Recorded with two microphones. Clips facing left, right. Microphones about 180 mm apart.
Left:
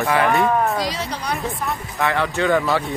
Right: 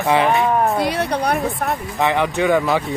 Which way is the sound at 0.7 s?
60° right (ahead or behind).